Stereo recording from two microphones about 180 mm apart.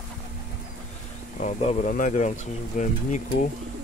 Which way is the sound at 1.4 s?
40° left (ahead or behind).